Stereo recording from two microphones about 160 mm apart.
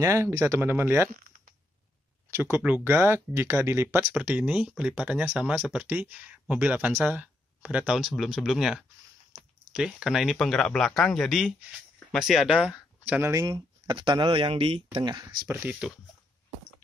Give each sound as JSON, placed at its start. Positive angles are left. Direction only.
{"t": 0.0, "sound": "speech", "side_deg": -15}
{"t": 2.5, "sound": "speech", "side_deg": -10}
{"t": 13.3, "sound": "speech", "side_deg": -25}
{"t": 15.4, "sound": "speech", "side_deg": -10}